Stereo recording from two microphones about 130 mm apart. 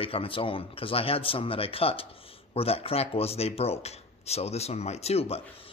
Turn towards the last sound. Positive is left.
turn(degrees=50)  # may be behind; listen again after turning